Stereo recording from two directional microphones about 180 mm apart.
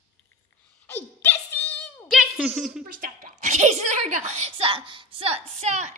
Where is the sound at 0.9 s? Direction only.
10° left (ahead or behind).